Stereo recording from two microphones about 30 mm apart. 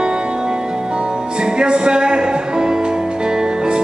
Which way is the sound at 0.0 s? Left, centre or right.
Right.